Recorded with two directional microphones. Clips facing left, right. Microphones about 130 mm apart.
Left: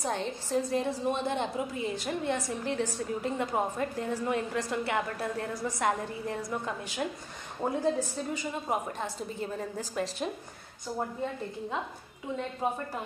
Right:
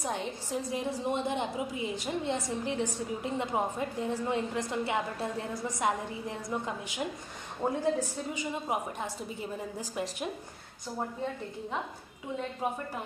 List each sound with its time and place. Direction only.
0.0 s a woman's voice: 10° right (ahead or behind)
7.6 s a woman's voice: 15° left (ahead or behind)
8.3 s a woman's voice: 10° right (ahead or behind)